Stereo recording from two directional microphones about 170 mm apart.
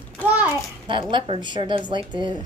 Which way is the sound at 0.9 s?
30° right (ahead or behind).